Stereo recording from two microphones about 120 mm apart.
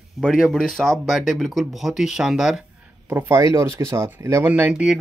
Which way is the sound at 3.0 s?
25° right (ahead or behind).